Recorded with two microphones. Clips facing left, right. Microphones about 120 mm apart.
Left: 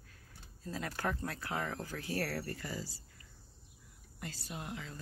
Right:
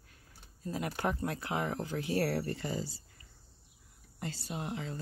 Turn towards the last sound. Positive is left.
turn(degrees=-30)  # may be behind; listen again after turning